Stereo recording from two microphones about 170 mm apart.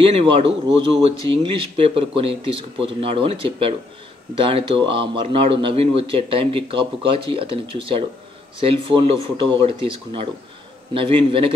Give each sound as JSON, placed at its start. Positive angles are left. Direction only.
{"t": 0.0, "sound": "speech", "side_deg": -30}